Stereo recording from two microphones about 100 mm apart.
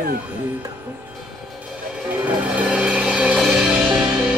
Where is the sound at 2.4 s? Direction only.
10° right (ahead or behind).